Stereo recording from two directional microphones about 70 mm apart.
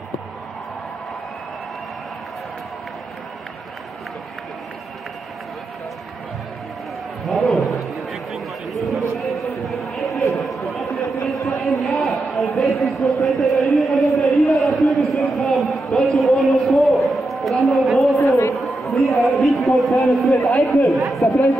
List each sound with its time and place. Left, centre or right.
7.2 s a sound: centre
12.5 s speech: centre
13.7 s a sound: centre
18.2 s speech: left
18.5 s chatter: centre
19.0 s a man's voice: centre